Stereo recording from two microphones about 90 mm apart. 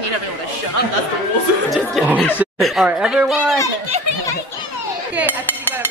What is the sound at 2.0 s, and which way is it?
A woman's voice, centre (ahead or behind).